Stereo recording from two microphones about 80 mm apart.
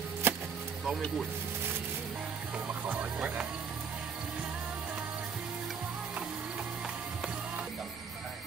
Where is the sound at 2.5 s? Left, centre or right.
Centre.